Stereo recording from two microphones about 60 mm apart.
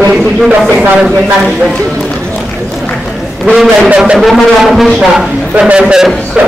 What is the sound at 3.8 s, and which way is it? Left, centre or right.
Speech, centre.